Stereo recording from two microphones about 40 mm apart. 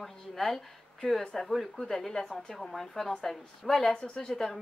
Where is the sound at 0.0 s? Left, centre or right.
Centre.